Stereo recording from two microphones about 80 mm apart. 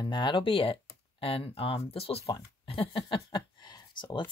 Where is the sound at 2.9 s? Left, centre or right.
Left.